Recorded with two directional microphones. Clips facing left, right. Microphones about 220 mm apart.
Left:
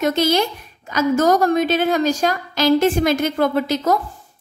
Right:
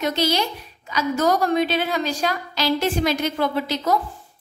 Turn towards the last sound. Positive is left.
turn(degrees=45)  # may be behind; listen again after turning